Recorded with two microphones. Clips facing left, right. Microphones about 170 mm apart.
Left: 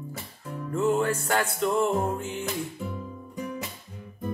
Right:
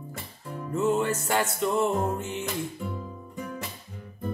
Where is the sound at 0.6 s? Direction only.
5° right (ahead or behind).